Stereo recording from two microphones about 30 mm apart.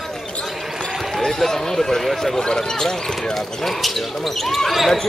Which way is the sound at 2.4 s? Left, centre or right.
Left.